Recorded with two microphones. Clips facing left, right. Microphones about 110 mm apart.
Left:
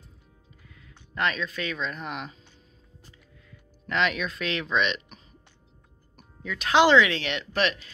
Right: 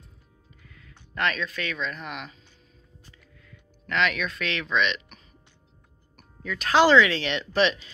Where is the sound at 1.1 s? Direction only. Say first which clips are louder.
Even; 20° left (ahead or behind).